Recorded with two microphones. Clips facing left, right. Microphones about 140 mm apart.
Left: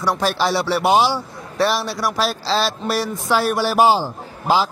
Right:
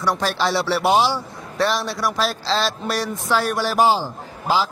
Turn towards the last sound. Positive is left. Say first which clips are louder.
# left 3 dB
turn(degrees=15)  # may be behind; listen again after turning